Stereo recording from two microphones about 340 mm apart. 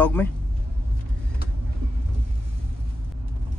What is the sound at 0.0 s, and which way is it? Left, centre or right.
Speech, centre.